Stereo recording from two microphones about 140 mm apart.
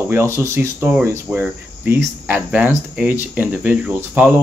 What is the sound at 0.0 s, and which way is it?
Speech, 15° right (ahead or behind).